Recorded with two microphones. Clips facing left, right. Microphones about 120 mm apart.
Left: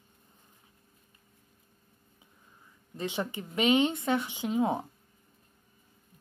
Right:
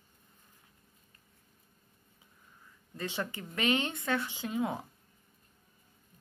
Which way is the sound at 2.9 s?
20° left (ahead or behind).